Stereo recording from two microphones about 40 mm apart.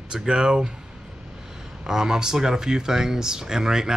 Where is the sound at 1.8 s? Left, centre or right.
Centre.